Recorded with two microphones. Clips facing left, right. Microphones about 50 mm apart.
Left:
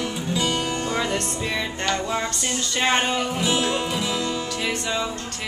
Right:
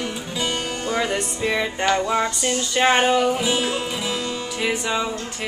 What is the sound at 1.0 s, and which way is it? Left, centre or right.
Music, centre.